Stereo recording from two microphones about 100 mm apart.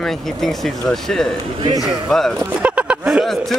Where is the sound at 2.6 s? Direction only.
10° right (ahead or behind).